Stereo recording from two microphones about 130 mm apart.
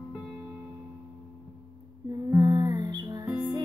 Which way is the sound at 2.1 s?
25° right (ahead or behind).